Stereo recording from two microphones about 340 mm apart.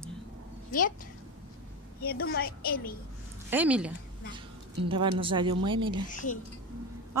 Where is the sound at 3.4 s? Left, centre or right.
Centre.